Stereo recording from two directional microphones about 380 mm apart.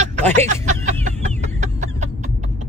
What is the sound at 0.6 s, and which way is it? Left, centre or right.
Chicken, centre.